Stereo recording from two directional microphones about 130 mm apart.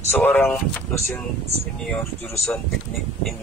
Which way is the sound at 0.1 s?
15° left (ahead or behind).